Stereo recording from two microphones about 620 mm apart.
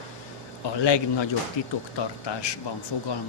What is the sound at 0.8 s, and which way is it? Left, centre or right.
Speech, left.